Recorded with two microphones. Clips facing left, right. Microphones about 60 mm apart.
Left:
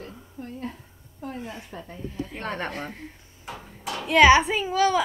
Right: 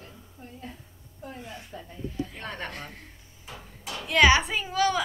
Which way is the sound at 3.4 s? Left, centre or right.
Left.